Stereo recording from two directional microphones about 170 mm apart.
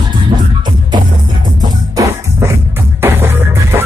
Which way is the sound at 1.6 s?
20° right (ahead or behind).